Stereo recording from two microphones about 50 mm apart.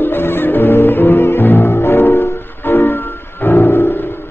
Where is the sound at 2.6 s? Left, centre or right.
Left.